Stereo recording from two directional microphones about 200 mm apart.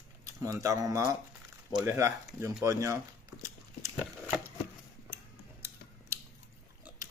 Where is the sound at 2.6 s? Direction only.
15° right (ahead or behind).